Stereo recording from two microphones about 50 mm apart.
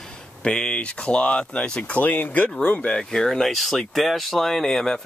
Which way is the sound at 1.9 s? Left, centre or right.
Left.